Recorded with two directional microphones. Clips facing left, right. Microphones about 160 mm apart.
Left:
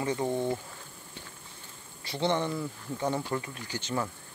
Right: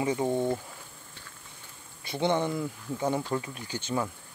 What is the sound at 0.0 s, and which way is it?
Speech, 15° right (ahead or behind).